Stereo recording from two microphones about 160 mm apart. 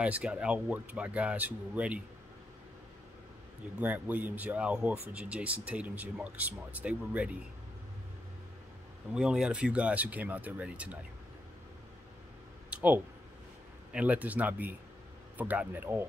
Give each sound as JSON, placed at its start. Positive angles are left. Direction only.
{"t": 0.0, "sound": "speech", "side_deg": -10}
{"t": 3.8, "sound": "speech", "side_deg": -10}
{"t": 9.1, "sound": "speech", "side_deg": -5}
{"t": 12.6, "sound": "a sound", "side_deg": -10}
{"t": 13.9, "sound": "speech", "side_deg": -10}